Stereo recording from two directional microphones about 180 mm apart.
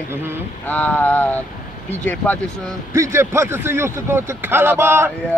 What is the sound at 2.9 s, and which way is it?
A man's voice, 15° right (ahead or behind).